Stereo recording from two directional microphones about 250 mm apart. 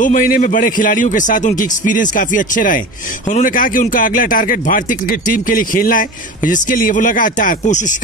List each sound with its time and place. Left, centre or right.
0.0 s speech: left